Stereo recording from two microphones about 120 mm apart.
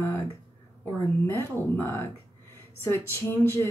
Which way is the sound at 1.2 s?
20° left (ahead or behind).